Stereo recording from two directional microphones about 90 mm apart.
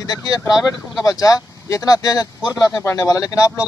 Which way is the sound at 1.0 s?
40° left (ahead or behind).